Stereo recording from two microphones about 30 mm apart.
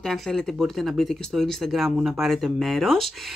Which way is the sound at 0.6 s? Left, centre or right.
Centre.